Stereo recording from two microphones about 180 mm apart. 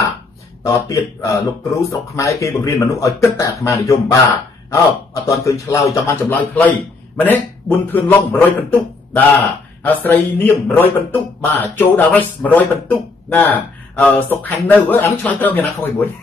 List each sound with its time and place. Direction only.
0.7 s speech: 15° left (ahead or behind)